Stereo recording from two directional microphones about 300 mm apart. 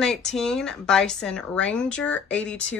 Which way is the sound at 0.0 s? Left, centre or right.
Centre.